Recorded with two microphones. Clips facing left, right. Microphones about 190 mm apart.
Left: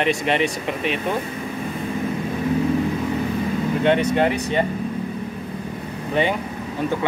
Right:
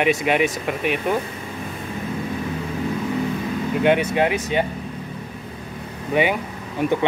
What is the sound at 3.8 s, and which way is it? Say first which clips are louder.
Speech: even; 5° right (ahead or behind).